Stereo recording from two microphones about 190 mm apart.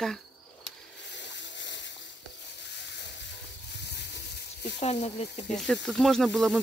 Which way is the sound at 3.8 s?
60° left (ahead or behind).